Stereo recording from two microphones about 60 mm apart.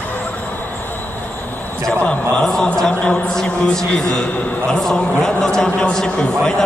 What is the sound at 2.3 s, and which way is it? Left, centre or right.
A man's voice, centre.